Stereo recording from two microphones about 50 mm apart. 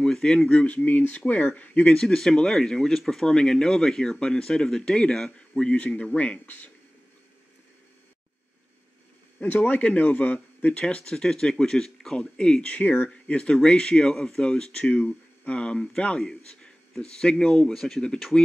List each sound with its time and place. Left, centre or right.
0.0 s speech: centre
0.5 s speech: left
2.0 s speech: centre; by 6.7 s left
9.4 s speech: left; by 12.7 s centre
12.7 s speech: left
13.1 s a man's voice: left
17.6 s speech: centre